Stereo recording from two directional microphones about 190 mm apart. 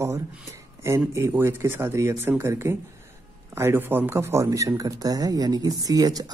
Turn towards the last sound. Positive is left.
turn(degrees=-20)  # may be behind; listen again after turning